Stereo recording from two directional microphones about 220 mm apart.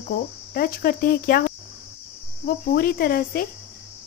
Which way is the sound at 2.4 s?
45° left (ahead or behind).